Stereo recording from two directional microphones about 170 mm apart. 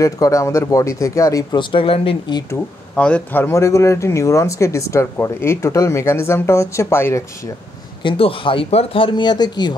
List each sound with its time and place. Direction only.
0.0 s speech: 20° left (ahead or behind)
3.0 s speech: 10° left (ahead or behind)
8.0 s speech: 30° left (ahead or behind)